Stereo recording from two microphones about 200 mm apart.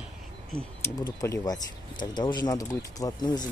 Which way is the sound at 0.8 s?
15° left (ahead or behind).